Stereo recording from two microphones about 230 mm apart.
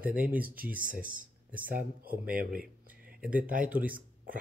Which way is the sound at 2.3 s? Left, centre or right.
Right.